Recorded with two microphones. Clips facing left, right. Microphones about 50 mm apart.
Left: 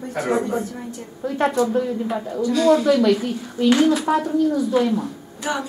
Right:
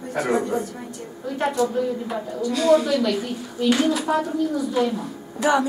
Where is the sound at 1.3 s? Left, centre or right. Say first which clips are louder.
Left 4 dB; centre.